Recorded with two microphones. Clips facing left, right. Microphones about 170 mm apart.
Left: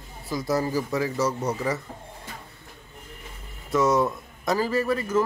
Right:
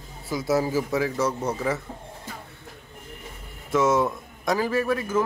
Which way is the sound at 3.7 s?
Centre (ahead or behind).